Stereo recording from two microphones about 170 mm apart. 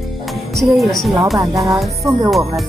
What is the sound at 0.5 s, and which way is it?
Speech, centre (ahead or behind).